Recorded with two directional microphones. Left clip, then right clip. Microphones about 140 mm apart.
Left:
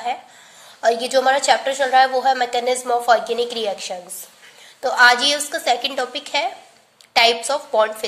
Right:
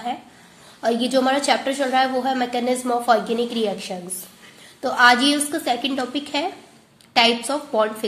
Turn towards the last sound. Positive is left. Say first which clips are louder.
# left 3 dB
turn(degrees=30)  # may be behind; listen again after turning